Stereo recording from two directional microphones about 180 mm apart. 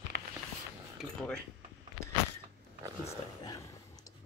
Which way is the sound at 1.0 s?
Centre (ahead or behind).